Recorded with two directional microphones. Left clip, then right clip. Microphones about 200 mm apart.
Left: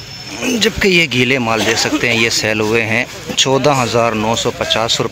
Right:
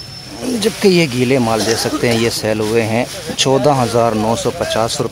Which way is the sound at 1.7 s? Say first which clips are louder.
Left 2 dB; 15° right (ahead or behind).